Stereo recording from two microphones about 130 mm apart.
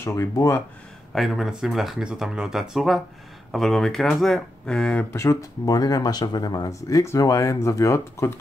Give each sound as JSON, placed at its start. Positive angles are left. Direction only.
{"t": 0.0, "sound": "speech", "side_deg": 20}
{"t": 1.1, "sound": "speech", "side_deg": 0}
{"t": 5.1, "sound": "speech", "side_deg": 20}